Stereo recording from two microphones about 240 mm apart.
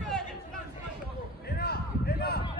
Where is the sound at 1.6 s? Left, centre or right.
Left.